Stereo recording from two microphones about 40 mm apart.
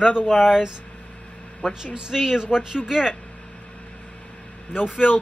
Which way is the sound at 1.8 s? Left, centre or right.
Centre.